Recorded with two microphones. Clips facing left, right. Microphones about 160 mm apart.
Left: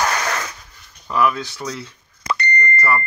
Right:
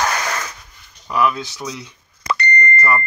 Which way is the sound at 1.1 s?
Centre (ahead or behind).